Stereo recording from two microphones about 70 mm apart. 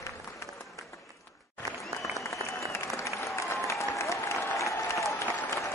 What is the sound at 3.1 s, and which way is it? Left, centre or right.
Applause, left.